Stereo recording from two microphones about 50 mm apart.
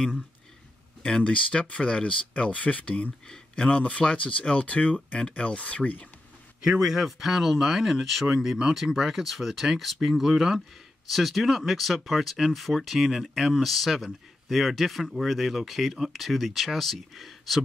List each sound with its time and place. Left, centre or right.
1.0 s speech: left
6.6 s speech: centre
8.3 s speech: centre